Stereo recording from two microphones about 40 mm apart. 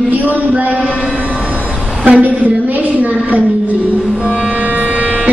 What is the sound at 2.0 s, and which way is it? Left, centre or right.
Speech, right.